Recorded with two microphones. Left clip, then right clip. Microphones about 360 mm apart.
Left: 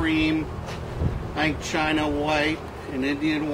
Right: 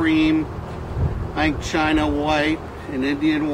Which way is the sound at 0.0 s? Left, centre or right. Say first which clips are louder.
Right 5 dB; centre.